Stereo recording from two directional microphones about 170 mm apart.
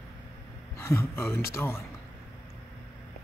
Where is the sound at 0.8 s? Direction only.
15° left (ahead or behind).